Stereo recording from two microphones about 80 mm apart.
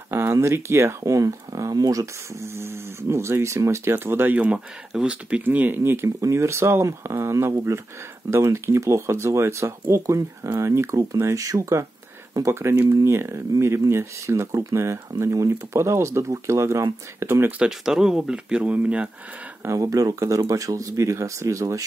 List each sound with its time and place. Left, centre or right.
0.1 s speech: right
2.5 s speech: right
17.6 s speech: centre
19.6 s speech: right